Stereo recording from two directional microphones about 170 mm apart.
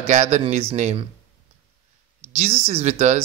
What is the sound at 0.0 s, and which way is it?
Speech, 45° right (ahead or behind).